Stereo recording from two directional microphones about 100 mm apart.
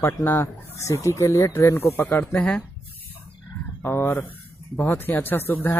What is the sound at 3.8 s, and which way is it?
Speech, 25° left (ahead or behind).